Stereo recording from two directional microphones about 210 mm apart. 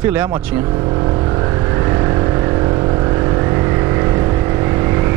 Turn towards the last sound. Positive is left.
turn(degrees=-15)  # may be behind; listen again after turning